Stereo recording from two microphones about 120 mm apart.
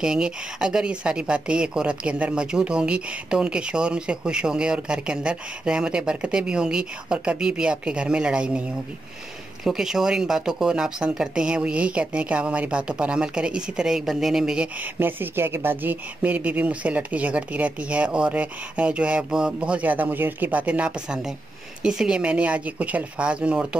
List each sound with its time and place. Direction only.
0.0 s speech: 5° right (ahead or behind)
9.7 s speech: 5° right (ahead or behind)
15.0 s speech: 15° right (ahead or behind)